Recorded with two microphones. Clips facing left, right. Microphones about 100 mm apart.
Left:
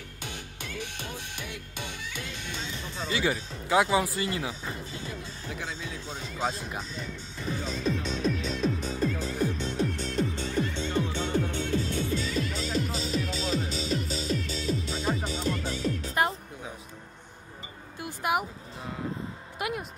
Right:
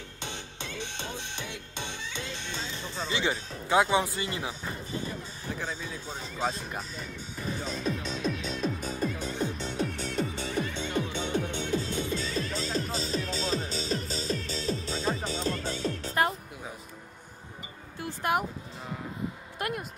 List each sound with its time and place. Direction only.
0.2 s music: 25° right (ahead or behind)
5.5 s speech: 40° right (ahead or behind)
6.3 s speech: centre (ahead or behind)
7.6 s music: centre (ahead or behind)
9.2 s music: 25° right (ahead or behind)
9.6 s music: 5° right (ahead or behind); by 12.1 s 20° right (ahead or behind)
12.2 s music: 35° right (ahead or behind)
18.0 s a sound: 5° left (ahead or behind)
19.6 s a sound: 5° left (ahead or behind)